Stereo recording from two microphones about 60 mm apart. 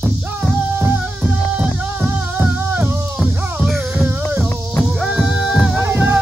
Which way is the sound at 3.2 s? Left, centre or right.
Centre.